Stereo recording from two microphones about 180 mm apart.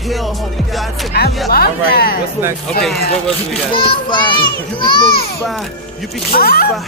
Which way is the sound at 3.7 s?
30° left (ahead or behind).